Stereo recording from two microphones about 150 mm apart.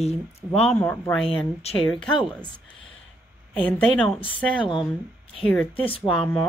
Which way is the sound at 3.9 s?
5° left (ahead or behind).